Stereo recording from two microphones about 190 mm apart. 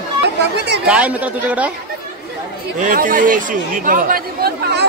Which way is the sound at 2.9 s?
45° right (ahead or behind).